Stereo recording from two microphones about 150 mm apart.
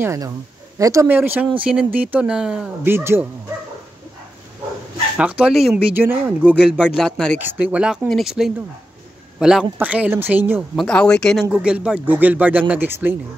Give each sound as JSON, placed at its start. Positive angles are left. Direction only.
{"t": 0.0, "sound": "a woman's voice", "side_deg": -20}
{"t": 2.8, "sound": "speech", "side_deg": -15}
{"t": 5.1, "sound": "speech", "side_deg": -10}
{"t": 7.0, "sound": "speech", "side_deg": 5}
{"t": 7.3, "sound": "speech", "side_deg": -10}
{"t": 10.8, "sound": "speech", "side_deg": 5}
{"t": 11.5, "sound": "speech", "side_deg": -5}